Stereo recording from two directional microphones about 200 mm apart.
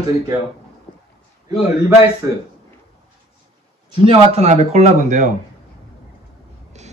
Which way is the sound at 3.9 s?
30° right (ahead or behind).